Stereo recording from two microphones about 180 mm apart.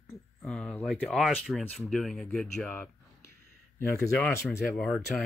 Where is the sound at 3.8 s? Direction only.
15° left (ahead or behind).